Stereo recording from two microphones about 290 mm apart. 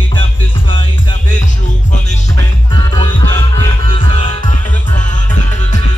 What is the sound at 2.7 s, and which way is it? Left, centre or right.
Music, centre.